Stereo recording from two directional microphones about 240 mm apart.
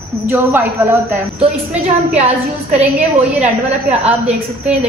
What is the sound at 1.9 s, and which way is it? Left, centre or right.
Speech, right.